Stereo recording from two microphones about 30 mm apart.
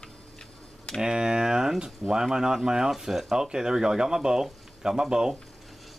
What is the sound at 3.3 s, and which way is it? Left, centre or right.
Speech, right.